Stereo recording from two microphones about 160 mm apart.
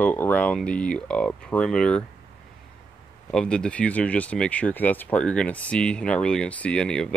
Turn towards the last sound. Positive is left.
turn(degrees=5)  # may be behind; listen again after turning